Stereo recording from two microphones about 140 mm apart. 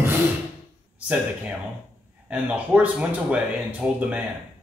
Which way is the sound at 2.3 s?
10° right (ahead or behind).